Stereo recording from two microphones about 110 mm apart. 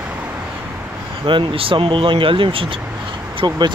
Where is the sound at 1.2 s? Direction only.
50° right (ahead or behind).